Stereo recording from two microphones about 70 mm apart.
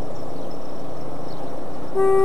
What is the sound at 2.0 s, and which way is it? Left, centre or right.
Vehicle, centre.